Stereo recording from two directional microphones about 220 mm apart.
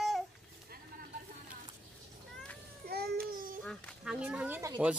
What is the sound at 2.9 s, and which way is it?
Babbling, 45° right (ahead or behind).